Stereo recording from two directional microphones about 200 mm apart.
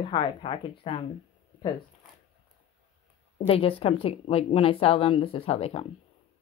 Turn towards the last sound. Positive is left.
turn(degrees=30)  # may be behind; listen again after turning